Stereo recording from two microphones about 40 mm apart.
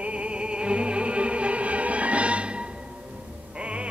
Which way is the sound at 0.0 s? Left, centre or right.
Right.